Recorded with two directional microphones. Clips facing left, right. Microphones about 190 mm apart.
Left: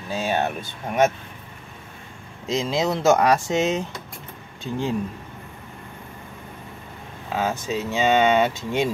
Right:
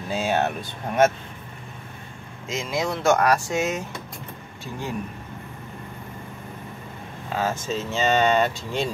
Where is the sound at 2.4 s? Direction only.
35° left (ahead or behind).